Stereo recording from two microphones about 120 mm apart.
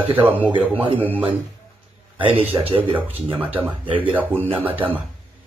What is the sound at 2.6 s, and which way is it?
Speech, 50° right (ahead or behind).